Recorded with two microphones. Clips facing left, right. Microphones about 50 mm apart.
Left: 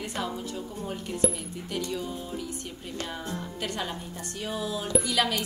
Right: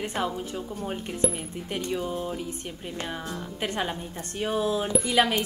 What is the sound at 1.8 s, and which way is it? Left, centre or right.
A woman's voice, right.